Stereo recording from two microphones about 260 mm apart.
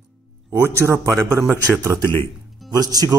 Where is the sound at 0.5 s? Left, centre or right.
Centre.